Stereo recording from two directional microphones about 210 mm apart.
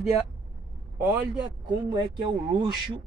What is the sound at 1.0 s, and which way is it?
Speech, 20° right (ahead or behind).